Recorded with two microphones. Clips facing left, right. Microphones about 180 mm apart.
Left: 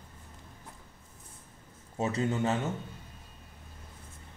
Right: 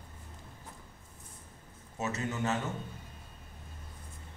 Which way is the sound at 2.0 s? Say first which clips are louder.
Left 5 dB; 30° left (ahead or behind).